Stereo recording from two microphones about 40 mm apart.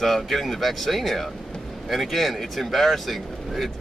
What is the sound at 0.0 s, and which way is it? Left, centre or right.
Speech, centre.